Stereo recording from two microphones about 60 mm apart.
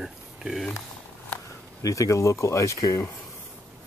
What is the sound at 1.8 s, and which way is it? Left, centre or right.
Speech, left.